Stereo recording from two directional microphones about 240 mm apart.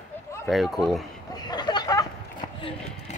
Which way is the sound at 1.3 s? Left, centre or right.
Centre.